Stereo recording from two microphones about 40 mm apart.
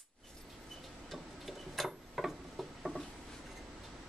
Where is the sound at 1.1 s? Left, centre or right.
Centre.